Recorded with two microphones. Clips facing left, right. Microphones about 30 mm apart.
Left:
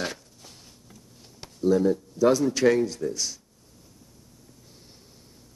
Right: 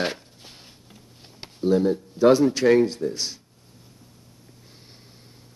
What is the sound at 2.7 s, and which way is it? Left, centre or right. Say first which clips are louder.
Speech: right 5 dB; right.